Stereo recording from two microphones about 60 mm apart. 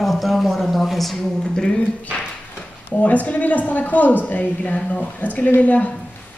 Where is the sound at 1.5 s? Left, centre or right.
Centre.